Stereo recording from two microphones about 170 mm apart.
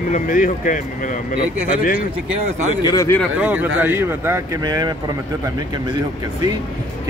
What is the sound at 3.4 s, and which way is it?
Speech, 10° right (ahead or behind).